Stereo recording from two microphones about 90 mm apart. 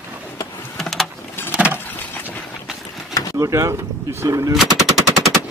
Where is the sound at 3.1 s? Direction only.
40° left (ahead or behind).